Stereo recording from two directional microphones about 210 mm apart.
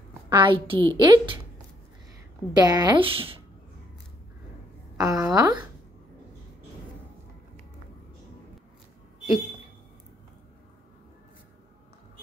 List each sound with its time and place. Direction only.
0.3 s a woman's voice: 20° right (ahead or behind)
2.5 s a woman's voice: 20° right (ahead or behind)
4.9 s a woman's voice: 15° right (ahead or behind)